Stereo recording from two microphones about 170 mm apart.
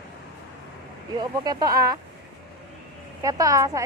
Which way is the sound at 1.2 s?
25° right (ahead or behind).